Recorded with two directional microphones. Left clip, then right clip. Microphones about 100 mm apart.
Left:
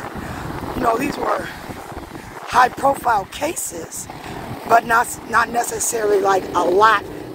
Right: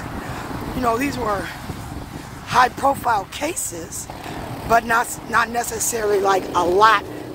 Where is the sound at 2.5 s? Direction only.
20° right (ahead or behind).